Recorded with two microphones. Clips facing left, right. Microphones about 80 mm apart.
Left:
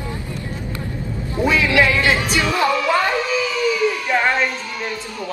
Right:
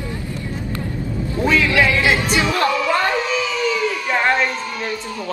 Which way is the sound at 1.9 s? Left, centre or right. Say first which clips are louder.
Even; centre.